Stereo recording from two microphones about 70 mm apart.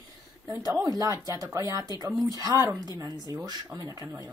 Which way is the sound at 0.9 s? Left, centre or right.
Right.